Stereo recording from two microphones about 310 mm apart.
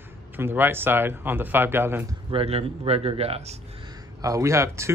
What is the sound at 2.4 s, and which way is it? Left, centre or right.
Speech, centre.